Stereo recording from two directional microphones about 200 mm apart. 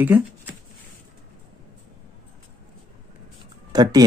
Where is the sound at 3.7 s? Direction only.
20° right (ahead or behind).